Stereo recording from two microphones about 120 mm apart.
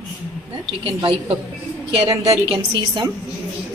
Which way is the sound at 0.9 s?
50° right (ahead or behind).